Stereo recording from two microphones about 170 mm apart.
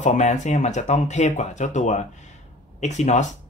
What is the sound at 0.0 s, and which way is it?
Speech, 45° left (ahead or behind).